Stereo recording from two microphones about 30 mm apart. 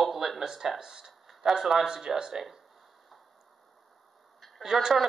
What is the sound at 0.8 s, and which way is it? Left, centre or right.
Speech, centre.